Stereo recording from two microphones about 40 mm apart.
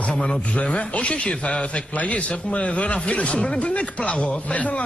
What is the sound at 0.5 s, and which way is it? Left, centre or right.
A man's voice, left.